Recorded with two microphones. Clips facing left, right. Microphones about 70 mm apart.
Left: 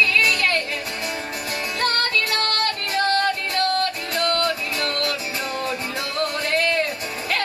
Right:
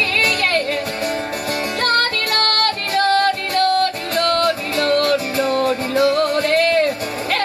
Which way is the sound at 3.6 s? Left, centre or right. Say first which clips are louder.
Right 8 dB; right.